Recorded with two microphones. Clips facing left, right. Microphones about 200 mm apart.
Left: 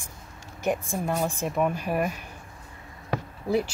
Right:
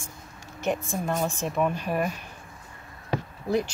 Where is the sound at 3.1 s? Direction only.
5° left (ahead or behind).